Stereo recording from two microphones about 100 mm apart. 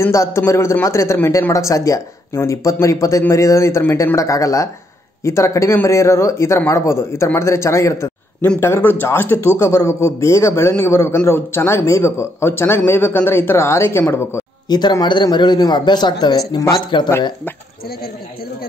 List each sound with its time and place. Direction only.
0.0 s a man's voice: 30° left (ahead or behind)
14.7 s a man's voice: 45° left (ahead or behind)